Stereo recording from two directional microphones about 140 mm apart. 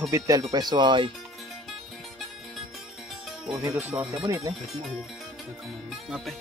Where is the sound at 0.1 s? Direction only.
25° right (ahead or behind).